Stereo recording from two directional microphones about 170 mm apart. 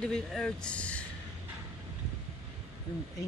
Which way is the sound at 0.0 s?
5° left (ahead or behind).